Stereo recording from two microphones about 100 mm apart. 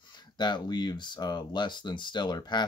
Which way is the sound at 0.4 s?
45° left (ahead or behind).